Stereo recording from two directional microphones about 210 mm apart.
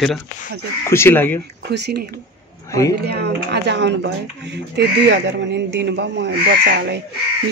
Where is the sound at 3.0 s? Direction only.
50° right (ahead or behind).